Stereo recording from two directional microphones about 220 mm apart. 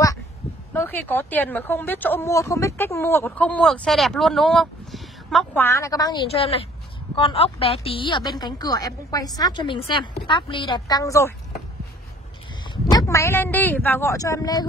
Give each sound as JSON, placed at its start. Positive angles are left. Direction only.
{"t": 0.7, "sound": "a woman's voice", "side_deg": 10}
{"t": 12.9, "sound": "speech", "side_deg": 15}